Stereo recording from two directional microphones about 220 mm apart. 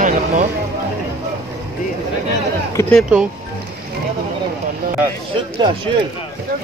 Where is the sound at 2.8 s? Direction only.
5° left (ahead or behind).